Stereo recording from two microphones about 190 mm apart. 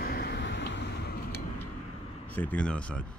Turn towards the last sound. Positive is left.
turn(degrees=5)  # may be behind; listen again after turning